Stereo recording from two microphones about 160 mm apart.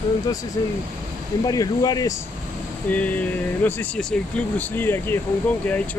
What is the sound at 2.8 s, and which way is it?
Speech, 10° left (ahead or behind).